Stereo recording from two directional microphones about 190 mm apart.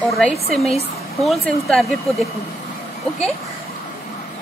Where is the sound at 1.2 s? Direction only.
Centre (ahead or behind).